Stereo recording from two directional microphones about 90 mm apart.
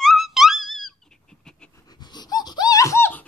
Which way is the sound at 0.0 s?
Centre (ahead or behind).